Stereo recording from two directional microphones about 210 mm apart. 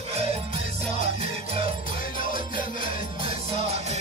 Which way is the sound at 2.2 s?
40° left (ahead or behind).